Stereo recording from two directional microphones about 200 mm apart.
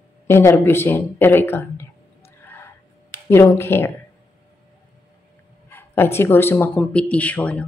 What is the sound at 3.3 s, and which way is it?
Speech, 10° left (ahead or behind).